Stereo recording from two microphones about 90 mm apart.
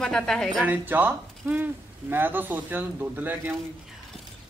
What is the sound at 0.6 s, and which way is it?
Speech, 20° right (ahead or behind).